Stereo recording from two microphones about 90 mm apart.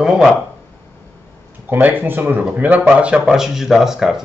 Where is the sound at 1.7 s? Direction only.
20° right (ahead or behind).